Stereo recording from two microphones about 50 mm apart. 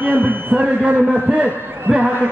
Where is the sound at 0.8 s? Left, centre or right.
Right.